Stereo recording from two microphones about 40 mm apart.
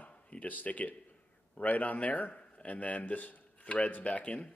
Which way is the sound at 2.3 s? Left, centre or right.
Left.